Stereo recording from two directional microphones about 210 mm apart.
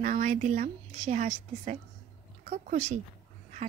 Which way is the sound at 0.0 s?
35° right (ahead or behind).